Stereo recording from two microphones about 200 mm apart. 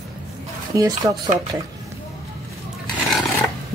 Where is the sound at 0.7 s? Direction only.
15° right (ahead or behind).